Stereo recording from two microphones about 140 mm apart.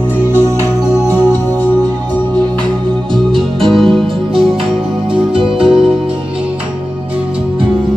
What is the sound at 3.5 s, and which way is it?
Music, 35° right (ahead or behind).